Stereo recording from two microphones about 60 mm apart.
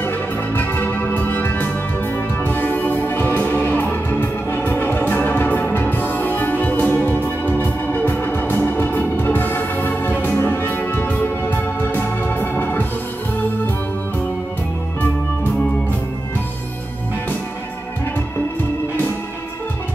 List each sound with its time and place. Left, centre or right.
0.6 s music: left